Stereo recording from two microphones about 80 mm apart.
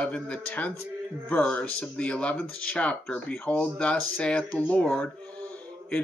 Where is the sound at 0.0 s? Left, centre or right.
Centre.